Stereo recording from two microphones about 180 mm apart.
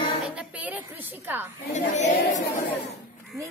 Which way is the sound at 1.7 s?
40° left (ahead or behind).